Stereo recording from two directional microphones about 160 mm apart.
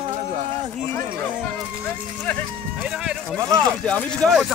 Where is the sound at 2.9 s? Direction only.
5° right (ahead or behind).